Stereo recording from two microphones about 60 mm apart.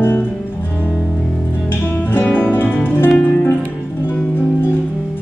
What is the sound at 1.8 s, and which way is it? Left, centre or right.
Music, left.